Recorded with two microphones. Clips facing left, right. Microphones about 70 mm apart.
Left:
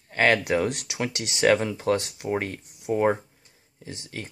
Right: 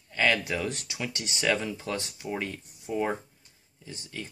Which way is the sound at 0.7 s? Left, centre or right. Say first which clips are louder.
Left 5 dB; left.